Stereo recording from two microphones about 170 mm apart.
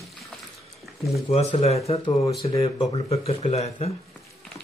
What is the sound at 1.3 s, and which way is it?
Speech, 40° left (ahead or behind).